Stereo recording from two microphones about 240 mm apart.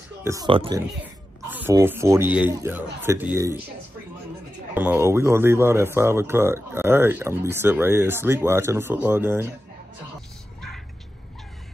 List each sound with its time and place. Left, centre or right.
0.2 s speech: centre
4.7 s speech: centre